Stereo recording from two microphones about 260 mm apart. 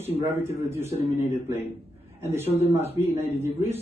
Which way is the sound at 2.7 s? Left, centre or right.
Left.